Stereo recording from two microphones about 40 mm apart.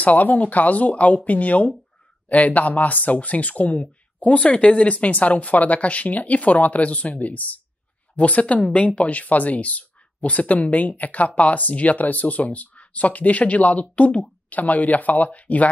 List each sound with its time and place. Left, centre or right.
0.0 s speech: left